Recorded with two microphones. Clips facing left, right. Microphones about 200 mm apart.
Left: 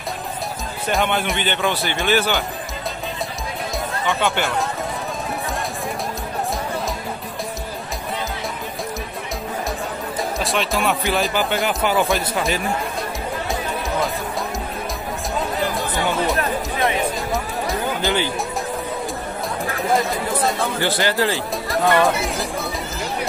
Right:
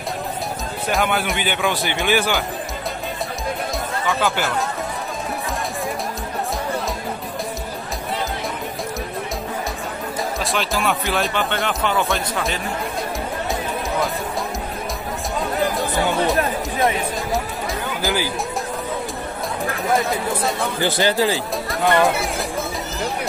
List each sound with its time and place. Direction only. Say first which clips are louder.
0.8 s speech: even; 5° right (ahead or behind)
4.0 s speech: even; centre (ahead or behind)
10.4 s speech: left 1 dB; centre (ahead or behind)
16.8 s music: right 1 dB; centre (ahead or behind)
20.0 s speech: even; centre (ahead or behind)
20.8 s speech: right 3 dB; 15° right (ahead or behind)
21.6 s speech: left 1 dB; centre (ahead or behind)